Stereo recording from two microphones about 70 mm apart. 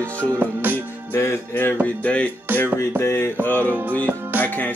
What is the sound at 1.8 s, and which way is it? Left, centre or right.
Music, centre.